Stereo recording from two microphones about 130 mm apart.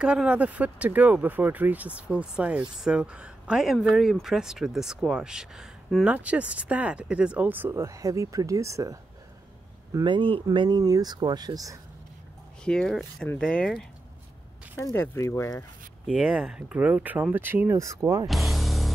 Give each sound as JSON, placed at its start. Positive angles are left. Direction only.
{"t": 0.0, "sound": "speech", "side_deg": -5}
{"t": 10.0, "sound": "speech", "side_deg": -40}
{"t": 12.6, "sound": "speech", "side_deg": 5}
{"t": 14.8, "sound": "speech", "side_deg": 20}
{"t": 16.1, "sound": "speech", "side_deg": -5}
{"t": 18.2, "sound": "music", "side_deg": 0}